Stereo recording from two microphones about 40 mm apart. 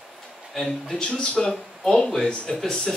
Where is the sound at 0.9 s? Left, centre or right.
Left.